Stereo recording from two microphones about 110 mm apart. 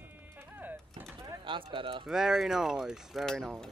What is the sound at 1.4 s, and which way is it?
Bird, 50° right (ahead or behind).